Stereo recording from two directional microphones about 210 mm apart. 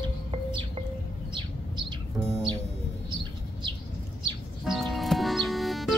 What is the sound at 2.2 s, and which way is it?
Music, 20° right (ahead or behind).